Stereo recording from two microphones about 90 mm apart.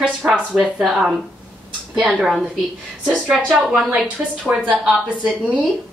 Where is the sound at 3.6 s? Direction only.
Centre (ahead or behind).